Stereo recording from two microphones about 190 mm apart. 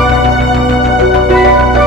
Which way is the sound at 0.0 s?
Centre (ahead or behind).